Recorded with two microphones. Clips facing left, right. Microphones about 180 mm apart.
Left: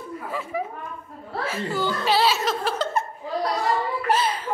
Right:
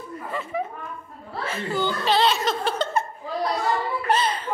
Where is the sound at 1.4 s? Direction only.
5° left (ahead or behind).